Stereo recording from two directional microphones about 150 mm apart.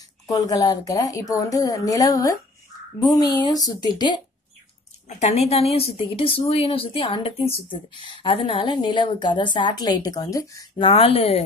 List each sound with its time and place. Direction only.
0.3 s a woman's voice: 25° left (ahead or behind)
5.0 s a woman's voice: 45° left (ahead or behind); by 10.6 s 20° left (ahead or behind)
10.8 s a woman's voice: 35° left (ahead or behind)